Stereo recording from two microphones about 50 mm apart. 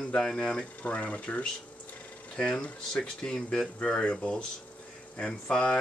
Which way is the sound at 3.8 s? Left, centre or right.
Left.